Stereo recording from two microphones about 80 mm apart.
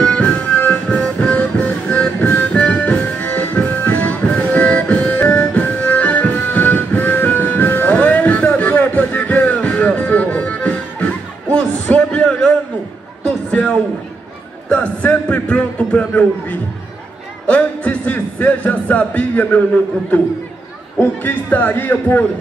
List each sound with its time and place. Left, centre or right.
0.0 s music: centre
11.5 s a sound: centre
14.7 s music: centre
16.1 s a man's voice: centre
21.0 s a man's voice: left